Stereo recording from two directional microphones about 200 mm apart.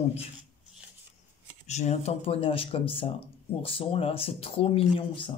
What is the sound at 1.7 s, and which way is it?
Speech, 35° left (ahead or behind).